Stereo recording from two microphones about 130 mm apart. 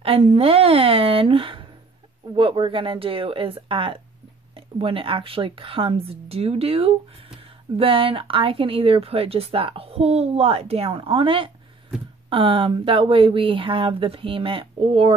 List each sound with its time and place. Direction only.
0.0 s speech: 45° right (ahead or behind)